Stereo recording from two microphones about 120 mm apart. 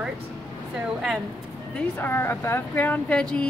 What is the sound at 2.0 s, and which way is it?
Speech, 20° left (ahead or behind).